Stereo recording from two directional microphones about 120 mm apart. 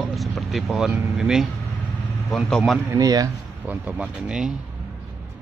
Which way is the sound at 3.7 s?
10° right (ahead or behind).